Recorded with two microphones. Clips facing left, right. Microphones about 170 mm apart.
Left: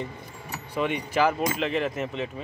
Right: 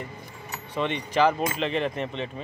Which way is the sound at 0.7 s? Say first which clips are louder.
Right 1 dB; 10° left (ahead or behind).